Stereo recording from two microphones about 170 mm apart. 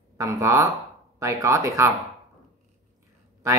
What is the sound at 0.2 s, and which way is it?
Speech, 20° right (ahead or behind).